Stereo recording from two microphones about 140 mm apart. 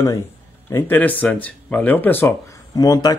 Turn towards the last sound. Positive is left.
turn(degrees=25)  # may be behind; listen again after turning